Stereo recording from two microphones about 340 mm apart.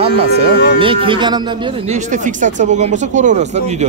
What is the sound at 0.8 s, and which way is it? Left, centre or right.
Speech, centre.